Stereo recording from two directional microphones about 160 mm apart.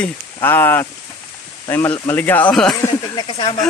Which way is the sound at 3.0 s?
30° left (ahead or behind).